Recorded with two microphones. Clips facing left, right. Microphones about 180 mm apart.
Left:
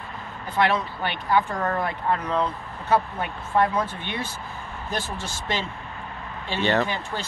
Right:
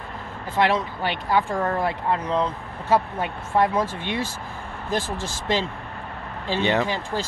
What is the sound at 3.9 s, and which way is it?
Speech, 90° right.